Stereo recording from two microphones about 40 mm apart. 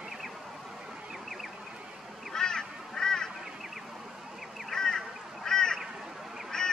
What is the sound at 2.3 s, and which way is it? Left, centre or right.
Honk, centre.